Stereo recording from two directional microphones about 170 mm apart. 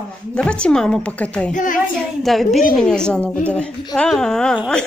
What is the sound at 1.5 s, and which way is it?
Speech, 50° left (ahead or behind).